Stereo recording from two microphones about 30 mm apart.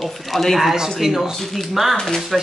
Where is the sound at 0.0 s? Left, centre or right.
Centre.